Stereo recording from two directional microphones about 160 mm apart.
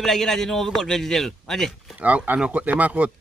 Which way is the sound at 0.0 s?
Centre (ahead or behind).